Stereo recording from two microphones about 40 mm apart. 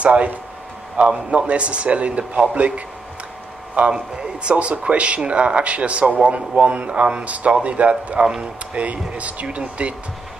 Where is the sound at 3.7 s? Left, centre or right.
Right.